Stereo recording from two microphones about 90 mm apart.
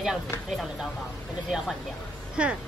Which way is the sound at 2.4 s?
15° right (ahead or behind).